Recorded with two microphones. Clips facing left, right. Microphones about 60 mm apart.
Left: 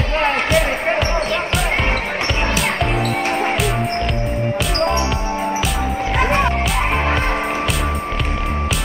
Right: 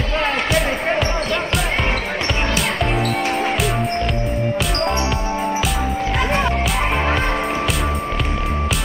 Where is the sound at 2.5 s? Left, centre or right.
Centre.